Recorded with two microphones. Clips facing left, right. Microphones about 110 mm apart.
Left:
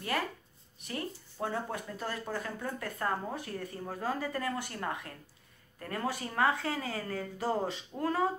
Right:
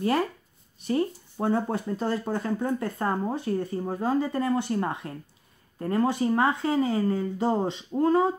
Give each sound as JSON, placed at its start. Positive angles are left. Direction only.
{"t": 0.7, "sound": "speech", "side_deg": -30}